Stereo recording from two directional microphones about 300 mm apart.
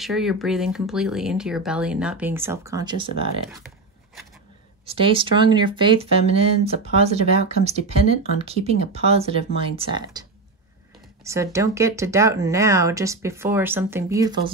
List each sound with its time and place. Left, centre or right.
0.0 s speech: centre
4.9 s speech: centre
11.2 s speech: centre